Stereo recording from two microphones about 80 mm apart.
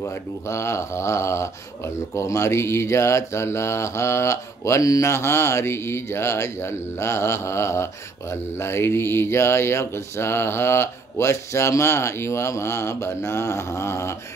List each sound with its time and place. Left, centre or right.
0.0 s speech: left